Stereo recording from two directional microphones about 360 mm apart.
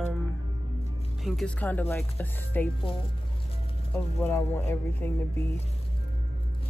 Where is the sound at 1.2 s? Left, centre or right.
Centre.